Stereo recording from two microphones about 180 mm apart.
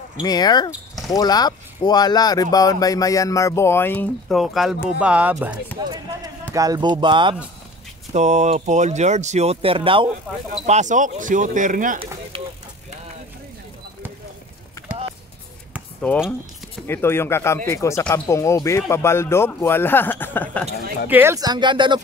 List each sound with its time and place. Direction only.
0.2 s speech: 20° left (ahead or behind)
4.4 s speech: centre (ahead or behind)
5.8 s speech: 25° right (ahead or behind)
8.1 s speech: 40° right (ahead or behind)
10.6 s speech: 45° right (ahead or behind)
12.3 s speech: 30° right (ahead or behind)
16.8 s speech: 15° left (ahead or behind)
21.1 s speech: 15° right (ahead or behind)